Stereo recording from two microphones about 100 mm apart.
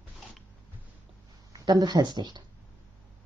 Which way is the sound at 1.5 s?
40° right (ahead or behind).